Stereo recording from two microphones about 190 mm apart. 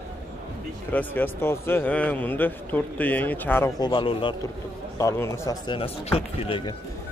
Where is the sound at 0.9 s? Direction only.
10° left (ahead or behind).